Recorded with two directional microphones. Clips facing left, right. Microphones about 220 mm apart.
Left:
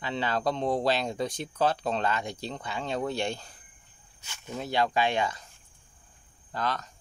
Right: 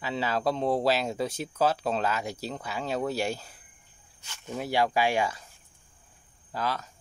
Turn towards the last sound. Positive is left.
turn(degrees=-5)  # may be behind; listen again after turning